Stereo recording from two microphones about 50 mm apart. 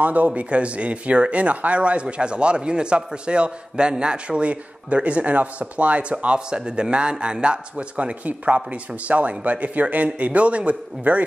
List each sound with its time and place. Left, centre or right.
0.0 s speech: right